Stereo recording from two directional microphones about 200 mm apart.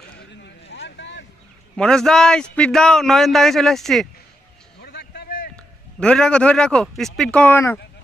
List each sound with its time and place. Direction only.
0.3 s vehicle: 60° left (ahead or behind)
1.8 s a man's voice: 5° left (ahead or behind)
4.7 s a sound: 55° left (ahead or behind)
5.9 s a man's voice: 5° left (ahead or behind)